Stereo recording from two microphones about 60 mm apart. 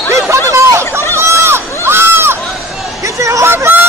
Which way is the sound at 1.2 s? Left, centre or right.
Right.